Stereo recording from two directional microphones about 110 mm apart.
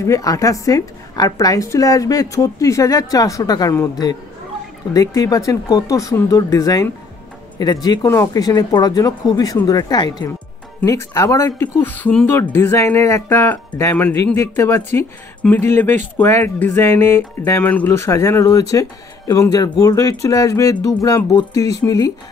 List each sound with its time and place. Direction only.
0.0 s a woman's voice: 30° left (ahead or behind)
4.9 s a woman's voice: 35° left (ahead or behind)